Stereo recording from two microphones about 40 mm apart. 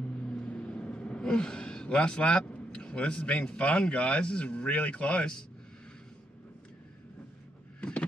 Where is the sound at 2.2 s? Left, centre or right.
Left.